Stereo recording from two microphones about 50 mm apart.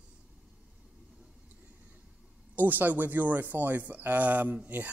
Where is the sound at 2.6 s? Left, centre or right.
Right.